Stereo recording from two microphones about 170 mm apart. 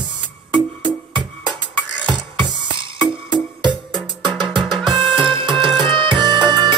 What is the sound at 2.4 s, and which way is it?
Music, 30° right (ahead or behind).